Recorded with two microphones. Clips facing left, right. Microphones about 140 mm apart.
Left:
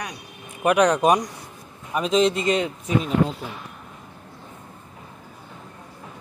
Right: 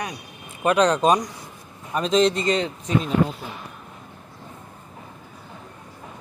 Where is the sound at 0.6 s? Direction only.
15° left (ahead or behind).